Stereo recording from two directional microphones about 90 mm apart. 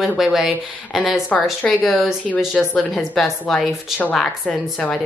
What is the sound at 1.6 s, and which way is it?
A woman's voice, 5° left (ahead or behind).